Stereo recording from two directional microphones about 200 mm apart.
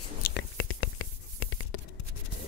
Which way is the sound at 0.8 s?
90° left.